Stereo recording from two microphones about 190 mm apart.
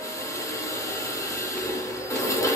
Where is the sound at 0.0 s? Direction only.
15° left (ahead or behind).